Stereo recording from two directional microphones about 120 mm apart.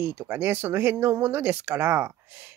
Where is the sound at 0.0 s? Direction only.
15° right (ahead or behind).